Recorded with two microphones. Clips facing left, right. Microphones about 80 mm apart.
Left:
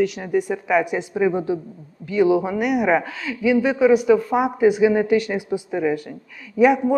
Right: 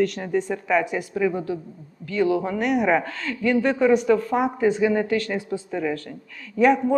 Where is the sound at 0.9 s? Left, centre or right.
Left.